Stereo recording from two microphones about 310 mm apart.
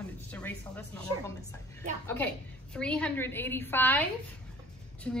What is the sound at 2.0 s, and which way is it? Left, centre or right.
A woman's voice, centre.